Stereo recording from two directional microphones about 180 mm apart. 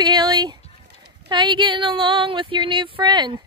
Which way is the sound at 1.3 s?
25° right (ahead or behind).